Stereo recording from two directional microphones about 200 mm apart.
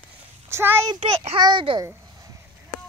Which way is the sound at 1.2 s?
25° right (ahead or behind).